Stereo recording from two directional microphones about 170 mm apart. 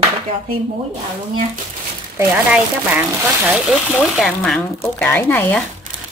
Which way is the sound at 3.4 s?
5° right (ahead or behind).